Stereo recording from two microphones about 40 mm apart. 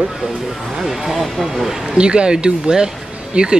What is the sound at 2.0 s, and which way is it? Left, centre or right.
Speech, right.